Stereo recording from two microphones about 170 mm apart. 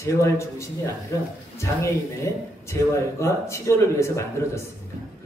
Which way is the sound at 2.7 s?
15° left (ahead or behind).